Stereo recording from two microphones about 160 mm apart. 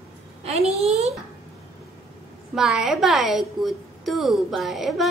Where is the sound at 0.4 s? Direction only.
40° right (ahead or behind).